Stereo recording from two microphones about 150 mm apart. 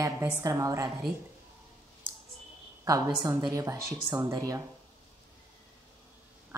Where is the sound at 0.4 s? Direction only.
25° right (ahead or behind).